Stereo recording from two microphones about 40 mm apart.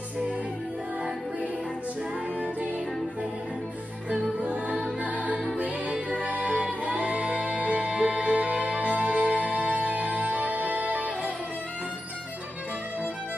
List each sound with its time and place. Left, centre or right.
4.1 s music: right
6.4 s music: right